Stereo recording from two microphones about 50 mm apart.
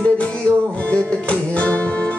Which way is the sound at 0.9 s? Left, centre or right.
Left.